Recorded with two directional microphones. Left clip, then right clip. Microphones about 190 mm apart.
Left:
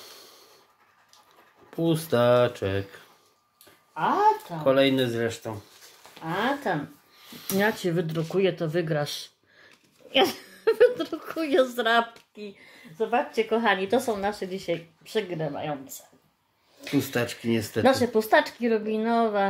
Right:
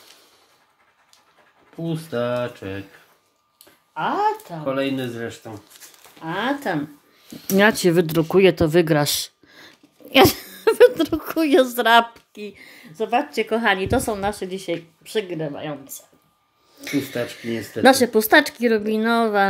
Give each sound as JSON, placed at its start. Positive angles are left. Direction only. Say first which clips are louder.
{"t": 1.8, "sound": "speech", "louder": "left 3 dB", "side_deg": 50}
{"t": 3.9, "sound": "speech", "louder": "right 1 dB", "side_deg": -20}
{"t": 4.6, "sound": "speech", "louder": "left 3 dB", "side_deg": 35}
{"t": 6.2, "sound": "speech", "louder": "right 3 dB", "side_deg": -25}
{"t": 7.5, "sound": "a woman's voice", "louder": "right 9 dB", "side_deg": -45}
{"t": 17.1, "sound": "speech", "louder": "even", "side_deg": 45}
{"t": 17.8, "sound": "speech", "louder": "right 7 dB", "side_deg": -35}